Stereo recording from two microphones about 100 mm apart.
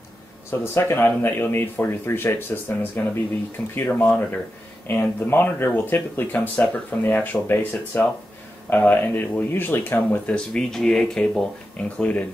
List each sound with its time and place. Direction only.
0.5 s a man's voice: 25° left (ahead or behind)